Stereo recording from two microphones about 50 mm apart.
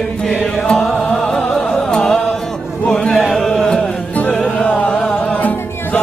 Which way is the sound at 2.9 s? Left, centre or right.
Centre.